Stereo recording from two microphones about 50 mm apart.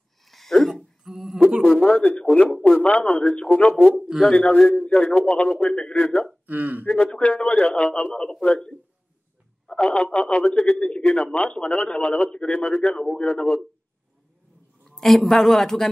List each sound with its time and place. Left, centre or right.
0.2 s a sound: centre
1.7 s a sound: centre
2.2 s speech: left
6.4 s speech: right
6.9 s speech: left
9.7 s speech: left
14.9 s a woman's voice: centre